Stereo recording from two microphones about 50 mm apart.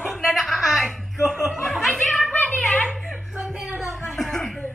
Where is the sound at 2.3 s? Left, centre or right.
Left.